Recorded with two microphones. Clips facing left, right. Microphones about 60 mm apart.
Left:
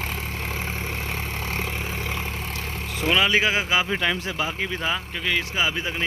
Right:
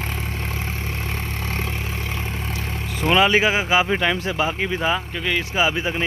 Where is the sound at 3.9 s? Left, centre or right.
Right.